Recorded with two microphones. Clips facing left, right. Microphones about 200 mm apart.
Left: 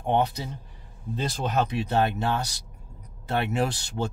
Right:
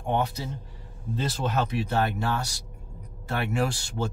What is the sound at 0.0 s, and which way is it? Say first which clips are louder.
Speech: left 3 dB; 20° left (ahead or behind).